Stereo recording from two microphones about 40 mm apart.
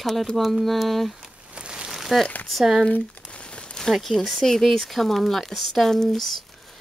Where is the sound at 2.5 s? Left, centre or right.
Centre.